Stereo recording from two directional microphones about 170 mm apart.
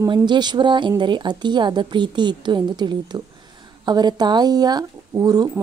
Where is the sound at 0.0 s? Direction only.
25° right (ahead or behind).